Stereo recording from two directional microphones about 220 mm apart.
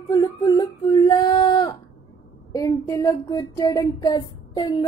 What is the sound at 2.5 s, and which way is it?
Female singing, 15° left (ahead or behind).